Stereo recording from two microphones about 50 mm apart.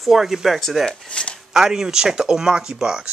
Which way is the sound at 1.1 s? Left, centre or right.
Left.